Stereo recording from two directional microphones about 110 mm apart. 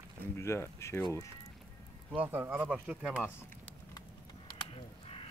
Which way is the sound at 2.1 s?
15° right (ahead or behind).